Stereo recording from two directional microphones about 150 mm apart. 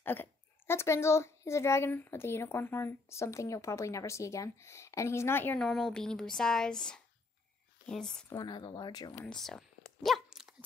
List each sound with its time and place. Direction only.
0.0 s a woman's voice: 15° left (ahead or behind)
8.4 s speech: 30° left (ahead or behind)
9.2 s dog: 5° left (ahead or behind)